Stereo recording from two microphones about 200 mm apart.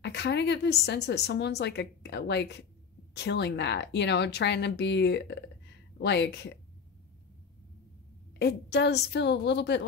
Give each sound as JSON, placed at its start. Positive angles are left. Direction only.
{"t": 0.0, "sound": "a woman's voice", "side_deg": 60}
{"t": 8.4, "sound": "a woman's voice", "side_deg": 55}